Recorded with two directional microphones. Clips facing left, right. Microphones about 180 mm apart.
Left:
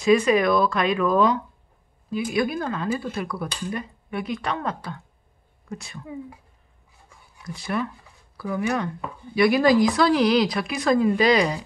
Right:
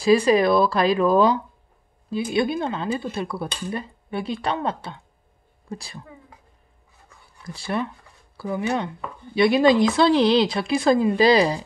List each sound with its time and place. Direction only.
0.0 s speech: 30° right (ahead or behind)
7.4 s speech: 30° right (ahead or behind)